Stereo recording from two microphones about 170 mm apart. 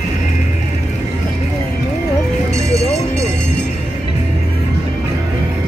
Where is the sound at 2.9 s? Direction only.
40° left (ahead or behind).